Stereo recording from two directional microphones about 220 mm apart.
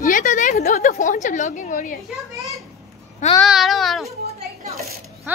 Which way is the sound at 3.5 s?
Centre (ahead or behind).